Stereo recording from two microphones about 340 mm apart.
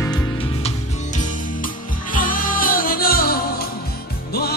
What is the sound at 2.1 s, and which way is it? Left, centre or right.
Music, left.